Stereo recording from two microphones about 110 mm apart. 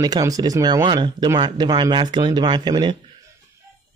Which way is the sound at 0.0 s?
35° right (ahead or behind).